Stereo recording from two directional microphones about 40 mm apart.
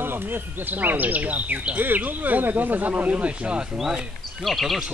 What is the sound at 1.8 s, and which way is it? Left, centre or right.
Speech, right.